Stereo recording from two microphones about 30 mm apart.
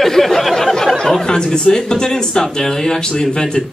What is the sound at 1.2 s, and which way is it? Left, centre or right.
Speech, left.